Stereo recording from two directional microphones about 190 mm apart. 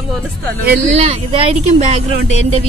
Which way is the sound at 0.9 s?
30° right (ahead or behind).